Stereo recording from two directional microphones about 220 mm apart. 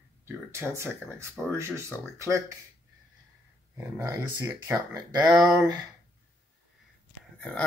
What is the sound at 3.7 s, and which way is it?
Speech, 10° right (ahead or behind).